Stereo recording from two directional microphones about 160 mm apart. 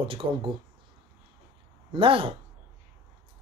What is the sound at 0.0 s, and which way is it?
Speech, 35° right (ahead or behind).